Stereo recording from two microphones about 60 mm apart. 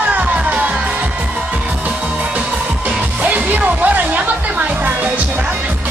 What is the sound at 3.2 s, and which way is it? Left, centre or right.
Music, right.